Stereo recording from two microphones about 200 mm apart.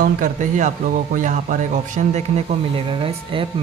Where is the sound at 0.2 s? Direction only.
40° right (ahead or behind).